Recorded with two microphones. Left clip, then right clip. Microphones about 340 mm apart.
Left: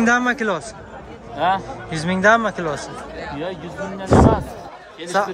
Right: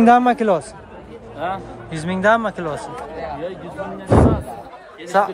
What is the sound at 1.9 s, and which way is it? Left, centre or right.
Speech, centre.